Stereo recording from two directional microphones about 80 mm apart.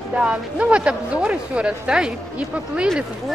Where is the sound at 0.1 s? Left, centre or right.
Centre.